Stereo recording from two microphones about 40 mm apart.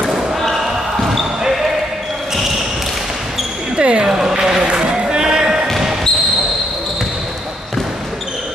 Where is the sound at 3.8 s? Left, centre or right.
Right.